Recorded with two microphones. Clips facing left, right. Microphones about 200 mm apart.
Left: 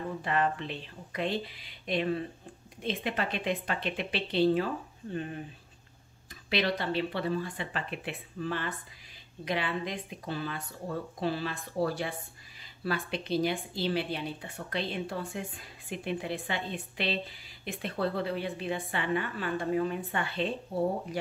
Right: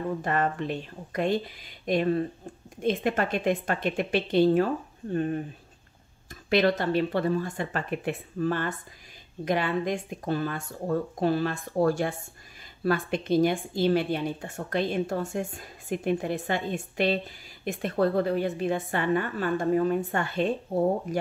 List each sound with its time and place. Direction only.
0.2 s speech: 45° right (ahead or behind)
6.5 s speech: 45° right (ahead or behind)